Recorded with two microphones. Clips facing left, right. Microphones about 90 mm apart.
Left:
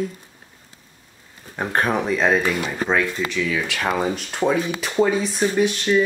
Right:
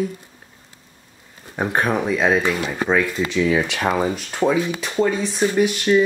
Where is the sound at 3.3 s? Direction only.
25° right (ahead or behind).